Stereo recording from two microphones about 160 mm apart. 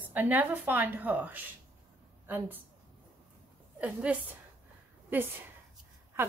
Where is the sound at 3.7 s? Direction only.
10° right (ahead or behind).